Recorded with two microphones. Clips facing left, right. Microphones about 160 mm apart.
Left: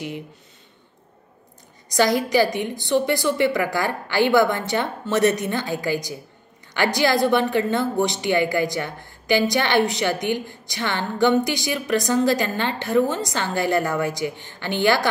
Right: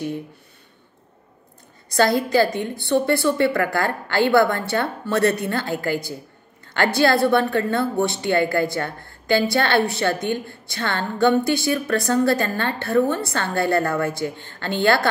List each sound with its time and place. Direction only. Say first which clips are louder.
1.9 s a woman's voice: right 1 dB; 15° left (ahead or behind)